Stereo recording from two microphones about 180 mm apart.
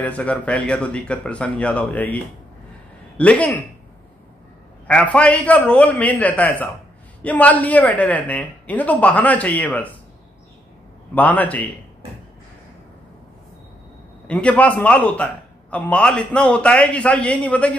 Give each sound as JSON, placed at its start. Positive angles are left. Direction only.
{"t": 0.0, "sound": "a man's voice", "side_deg": 5}
{"t": 5.1, "sound": "a man's voice", "side_deg": 5}
{"t": 11.1, "sound": "a man's voice", "side_deg": 10}
{"t": 14.2, "sound": "a man's voice", "side_deg": 5}